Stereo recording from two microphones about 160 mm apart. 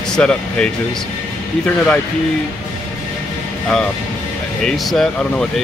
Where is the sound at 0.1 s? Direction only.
5° left (ahead or behind).